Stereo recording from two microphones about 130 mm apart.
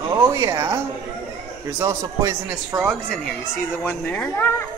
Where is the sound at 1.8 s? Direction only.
25° right (ahead or behind).